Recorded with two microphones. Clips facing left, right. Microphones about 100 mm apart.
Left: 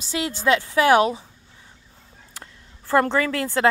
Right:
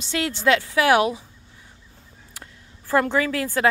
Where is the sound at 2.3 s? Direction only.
35° left (ahead or behind).